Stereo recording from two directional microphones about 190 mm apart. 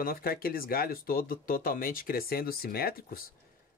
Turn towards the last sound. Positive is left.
turn(degrees=55)  # may be behind; listen again after turning